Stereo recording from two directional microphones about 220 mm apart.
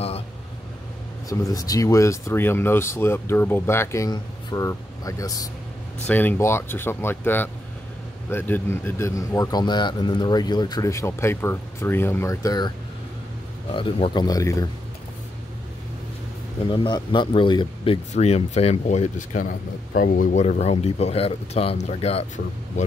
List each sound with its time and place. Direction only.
1.3 s a man's voice: 15° left (ahead or behind)
13.7 s speech: 25° left (ahead or behind)
16.6 s speech: 20° left (ahead or behind)